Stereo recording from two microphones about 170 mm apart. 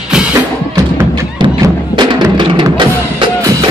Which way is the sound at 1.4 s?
25° right (ahead or behind).